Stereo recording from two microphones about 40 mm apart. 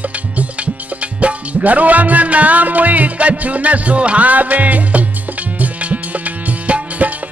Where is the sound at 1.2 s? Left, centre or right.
Right.